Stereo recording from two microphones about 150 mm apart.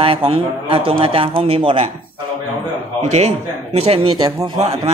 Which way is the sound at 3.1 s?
45° right (ahead or behind).